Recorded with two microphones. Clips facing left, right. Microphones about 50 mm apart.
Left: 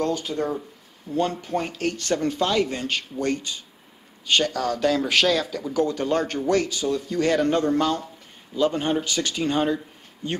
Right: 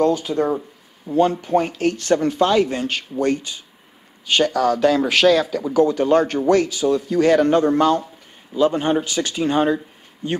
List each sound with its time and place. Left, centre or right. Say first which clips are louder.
0.0 s speech: right 7 dB; centre